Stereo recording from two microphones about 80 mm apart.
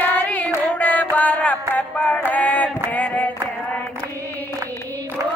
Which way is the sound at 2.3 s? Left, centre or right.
Centre.